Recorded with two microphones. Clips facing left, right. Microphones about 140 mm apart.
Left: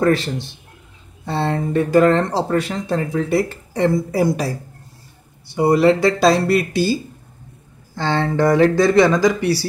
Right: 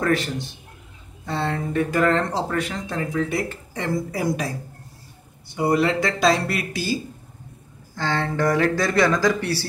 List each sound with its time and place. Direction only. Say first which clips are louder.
0.0 s speech: left 5 dB; 30° left (ahead or behind)
5.5 s speech: left 6 dB; 30° left (ahead or behind)
7.9 s speech: left 5 dB; 30° left (ahead or behind); by 9.7 s 15° left (ahead or behind)